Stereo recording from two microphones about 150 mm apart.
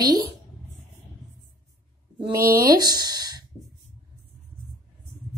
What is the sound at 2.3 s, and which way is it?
Speech, 20° right (ahead or behind).